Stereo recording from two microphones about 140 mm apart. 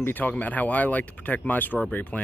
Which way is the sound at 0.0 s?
10° left (ahead or behind).